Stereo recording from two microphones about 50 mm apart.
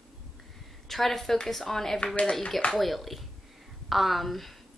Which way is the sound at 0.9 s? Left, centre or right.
Centre.